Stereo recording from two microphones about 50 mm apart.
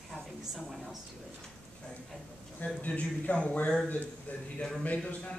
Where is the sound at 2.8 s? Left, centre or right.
Left.